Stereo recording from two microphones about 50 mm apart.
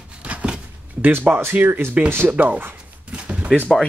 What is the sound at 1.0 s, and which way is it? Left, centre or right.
Speech, right.